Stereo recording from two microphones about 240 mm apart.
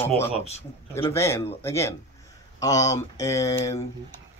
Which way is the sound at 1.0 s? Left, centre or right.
Centre.